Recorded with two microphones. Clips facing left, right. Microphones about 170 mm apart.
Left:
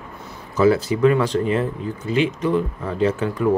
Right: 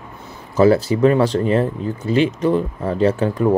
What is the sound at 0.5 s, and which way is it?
Speech, 35° right (ahead or behind).